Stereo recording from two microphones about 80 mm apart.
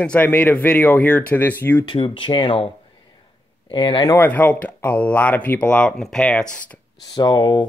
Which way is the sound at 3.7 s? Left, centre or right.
Left.